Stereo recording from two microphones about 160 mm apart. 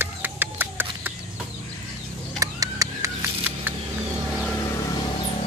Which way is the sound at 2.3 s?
20° right (ahead or behind).